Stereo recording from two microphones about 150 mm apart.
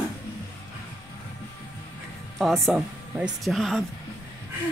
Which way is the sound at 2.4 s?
Centre (ahead or behind).